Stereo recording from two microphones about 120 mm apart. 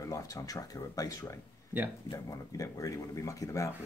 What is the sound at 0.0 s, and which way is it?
Speech, 25° left (ahead or behind).